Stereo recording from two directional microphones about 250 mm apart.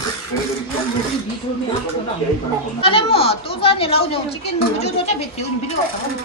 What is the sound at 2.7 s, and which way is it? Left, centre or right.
Speech, left.